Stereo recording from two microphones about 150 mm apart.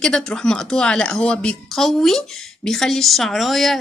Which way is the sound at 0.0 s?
5° left (ahead or behind).